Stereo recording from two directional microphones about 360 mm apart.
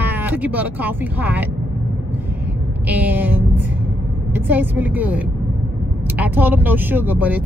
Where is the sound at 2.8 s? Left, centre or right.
Centre.